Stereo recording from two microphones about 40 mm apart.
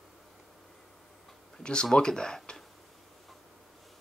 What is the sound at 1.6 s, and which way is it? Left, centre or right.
Speech, left.